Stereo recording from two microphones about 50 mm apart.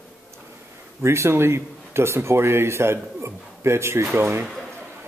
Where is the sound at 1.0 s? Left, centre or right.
Right.